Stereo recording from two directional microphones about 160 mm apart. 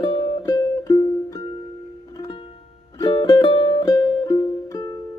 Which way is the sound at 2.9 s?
30° left (ahead or behind).